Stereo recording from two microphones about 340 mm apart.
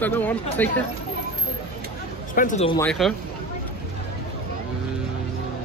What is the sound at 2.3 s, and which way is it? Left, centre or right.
Speech, left.